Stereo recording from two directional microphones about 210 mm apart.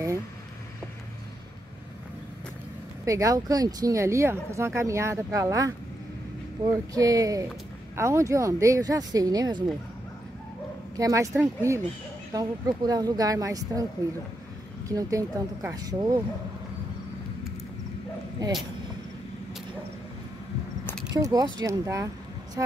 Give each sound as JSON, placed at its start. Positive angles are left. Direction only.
{"t": 3.1, "sound": "speech", "side_deg": -15}
{"t": 11.0, "sound": "speech", "side_deg": -15}
{"t": 14.9, "sound": "speech", "side_deg": -15}
{"t": 20.8, "sound": "pulleys", "side_deg": 5}
{"t": 21.1, "sound": "speech", "side_deg": -15}